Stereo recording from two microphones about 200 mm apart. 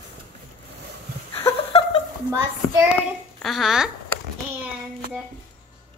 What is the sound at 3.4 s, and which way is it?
Speech, centre (ahead or behind).